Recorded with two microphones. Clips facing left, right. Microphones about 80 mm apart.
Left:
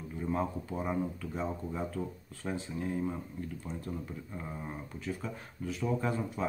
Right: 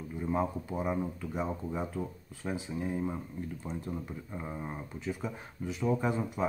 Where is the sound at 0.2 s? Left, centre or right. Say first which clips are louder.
Right 2 dB; centre.